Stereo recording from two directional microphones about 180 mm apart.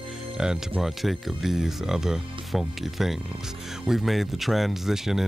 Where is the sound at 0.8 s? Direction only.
Centre (ahead or behind).